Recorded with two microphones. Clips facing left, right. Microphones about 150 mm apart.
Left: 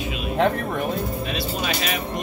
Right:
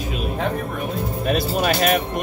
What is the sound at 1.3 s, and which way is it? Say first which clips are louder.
Speech: right 6 dB; 55° right (ahead or behind).